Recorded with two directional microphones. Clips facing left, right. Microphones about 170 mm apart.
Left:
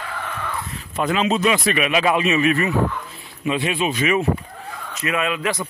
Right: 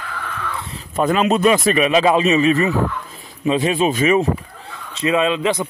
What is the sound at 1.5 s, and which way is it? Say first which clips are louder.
Speech: right 5 dB; 40° right (ahead or behind).